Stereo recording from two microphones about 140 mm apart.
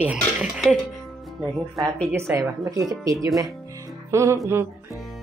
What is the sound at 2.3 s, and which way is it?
Speech, 25° right (ahead or behind).